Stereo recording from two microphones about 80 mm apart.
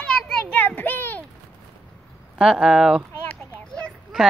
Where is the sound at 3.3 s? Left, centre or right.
Centre.